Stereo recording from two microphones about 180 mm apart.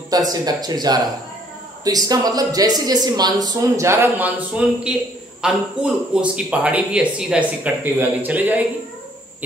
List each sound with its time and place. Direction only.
0.1 s a man's voice: 20° right (ahead or behind)